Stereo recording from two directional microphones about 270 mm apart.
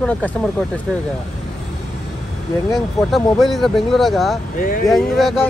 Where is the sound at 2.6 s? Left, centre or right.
Centre.